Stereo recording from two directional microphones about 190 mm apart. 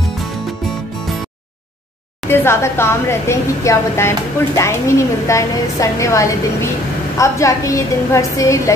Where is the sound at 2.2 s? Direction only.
10° left (ahead or behind).